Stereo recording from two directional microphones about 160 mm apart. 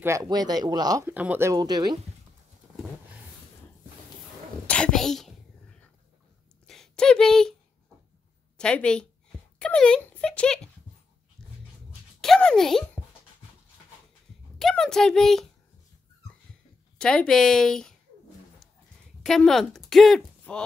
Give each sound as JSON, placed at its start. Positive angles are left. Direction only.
{"t": 0.0, "sound": "speech", "side_deg": -20}
{"t": 1.1, "sound": "speech", "side_deg": -10}
{"t": 4.6, "sound": "a woman's voice", "side_deg": 5}
{"t": 6.7, "sound": "a sound", "side_deg": 5}
{"t": 8.5, "sound": "a woman's voice", "side_deg": 5}
{"t": 11.4, "sound": "dog", "side_deg": 0}
{"t": 12.2, "sound": "a child's voice", "side_deg": 5}
{"t": 14.6, "sound": "a woman's voice", "side_deg": 0}
{"t": 17.0, "sound": "a woman's voice", "side_deg": 5}
{"t": 19.2, "sound": "speech", "side_deg": 0}